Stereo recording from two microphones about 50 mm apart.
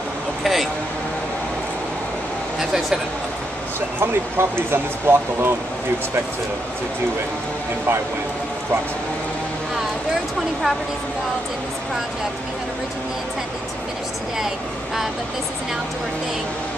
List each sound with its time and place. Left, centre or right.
0.4 s a sound: centre
2.6 s speech: centre
4.0 s speech: right